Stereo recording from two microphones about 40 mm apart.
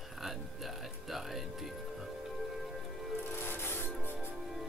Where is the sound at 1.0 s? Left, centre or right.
Centre.